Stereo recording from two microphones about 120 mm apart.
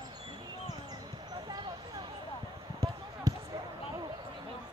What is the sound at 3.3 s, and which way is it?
Basketball bounce, 30° right (ahead or behind).